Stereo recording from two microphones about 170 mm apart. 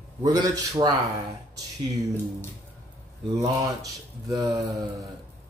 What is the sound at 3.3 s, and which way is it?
Mantra, 20° right (ahead or behind).